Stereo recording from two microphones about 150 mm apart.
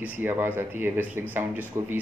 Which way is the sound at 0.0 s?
10° right (ahead or behind).